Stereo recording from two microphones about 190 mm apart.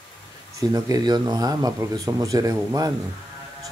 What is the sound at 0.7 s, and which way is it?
A man's voice, 20° right (ahead or behind).